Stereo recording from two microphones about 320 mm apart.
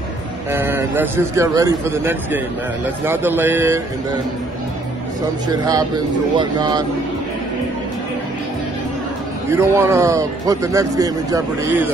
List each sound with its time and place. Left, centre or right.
0.5 s a man's voice: centre
6.3 s a man's voice: centre
9.5 s a man's voice: centre